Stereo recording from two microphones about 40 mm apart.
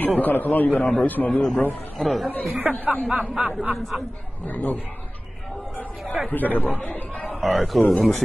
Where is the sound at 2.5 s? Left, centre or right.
Right.